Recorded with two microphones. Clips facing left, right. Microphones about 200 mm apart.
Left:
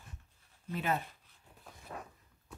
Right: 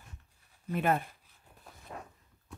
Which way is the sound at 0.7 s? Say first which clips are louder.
Right 5 dB; 55° right (ahead or behind).